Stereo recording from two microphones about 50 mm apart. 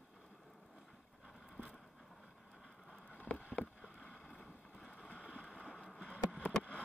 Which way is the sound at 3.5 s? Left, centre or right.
Left.